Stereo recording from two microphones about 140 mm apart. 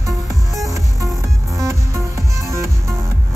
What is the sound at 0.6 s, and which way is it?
Music, 25° right (ahead or behind).